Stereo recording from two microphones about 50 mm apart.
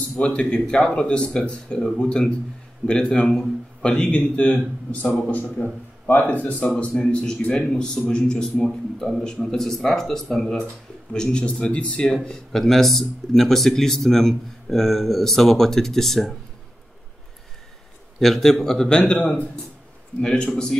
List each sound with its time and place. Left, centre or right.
0.1 s speech: left
5.3 s a man's voice: left
6.6 s speech: centre
8.6 s a man's voice: centre
18.2 s a man's voice: centre
18.9 s speech: left
20.2 s speech: centre